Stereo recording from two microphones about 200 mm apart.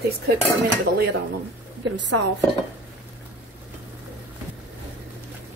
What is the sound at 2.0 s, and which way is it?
Speech, 65° right (ahead or behind).